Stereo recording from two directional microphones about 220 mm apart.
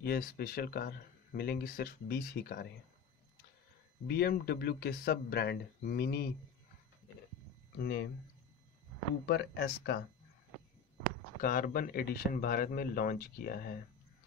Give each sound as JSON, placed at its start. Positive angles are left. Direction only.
{"t": 0.0, "sound": "speech", "side_deg": 45}
{"t": 4.1, "sound": "speech", "side_deg": 45}
{"t": 7.7, "sound": "speech", "side_deg": 45}
{"t": 9.2, "sound": "speech", "side_deg": 50}
{"t": 11.4, "sound": "speech", "side_deg": 40}